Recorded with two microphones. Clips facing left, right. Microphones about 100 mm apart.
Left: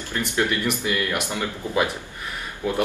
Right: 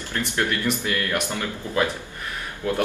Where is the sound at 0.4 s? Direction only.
15° left (ahead or behind).